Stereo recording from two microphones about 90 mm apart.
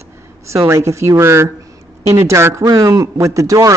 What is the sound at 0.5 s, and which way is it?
Speech, 35° right (ahead or behind).